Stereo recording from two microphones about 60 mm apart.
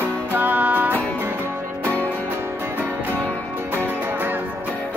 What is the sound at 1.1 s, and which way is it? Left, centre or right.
Music, right.